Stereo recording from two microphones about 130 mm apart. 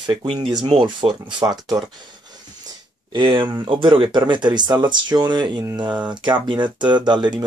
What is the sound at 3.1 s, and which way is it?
Speech, 40° right (ahead or behind).